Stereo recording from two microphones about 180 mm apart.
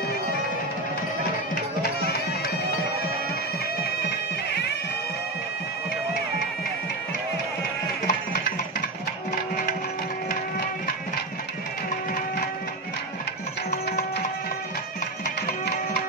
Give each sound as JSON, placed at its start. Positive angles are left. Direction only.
{"t": 1.8, "sound": "music", "side_deg": 60}
{"t": 8.1, "sound": "music", "side_deg": 55}
{"t": 15.2, "sound": "music", "side_deg": 60}